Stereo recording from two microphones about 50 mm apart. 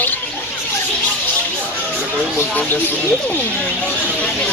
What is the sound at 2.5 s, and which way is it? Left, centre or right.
Speech, left.